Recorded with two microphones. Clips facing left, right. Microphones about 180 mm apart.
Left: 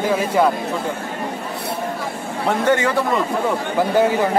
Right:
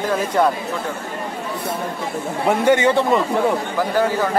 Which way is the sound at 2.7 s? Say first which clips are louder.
Right 3 dB; 20° right (ahead or behind).